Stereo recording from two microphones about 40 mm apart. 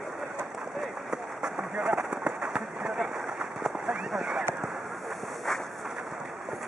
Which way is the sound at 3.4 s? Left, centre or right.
Centre.